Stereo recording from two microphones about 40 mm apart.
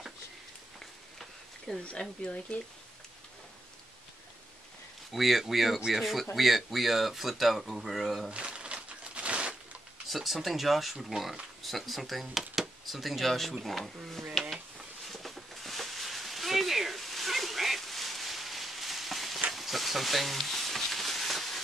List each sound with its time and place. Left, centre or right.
1.9 s speech: left
5.1 s speech: centre
8.3 s crumpling: right
10.0 s speech: centre
15.0 s a sound: centre
19.5 s frying: centre